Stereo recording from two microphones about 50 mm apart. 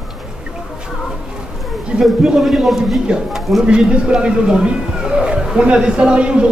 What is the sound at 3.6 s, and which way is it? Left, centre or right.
Speech, centre.